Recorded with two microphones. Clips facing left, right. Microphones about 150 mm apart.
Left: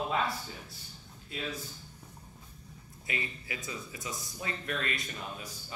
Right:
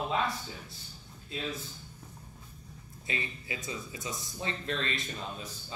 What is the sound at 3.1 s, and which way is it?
Speech, 25° right (ahead or behind).